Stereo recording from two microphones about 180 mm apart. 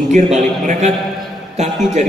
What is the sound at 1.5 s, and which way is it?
Speech, 35° right (ahead or behind).